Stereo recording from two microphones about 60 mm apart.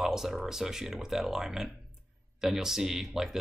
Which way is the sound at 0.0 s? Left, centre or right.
Centre.